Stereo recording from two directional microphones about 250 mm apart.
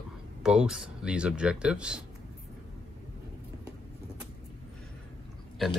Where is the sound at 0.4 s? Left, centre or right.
Centre.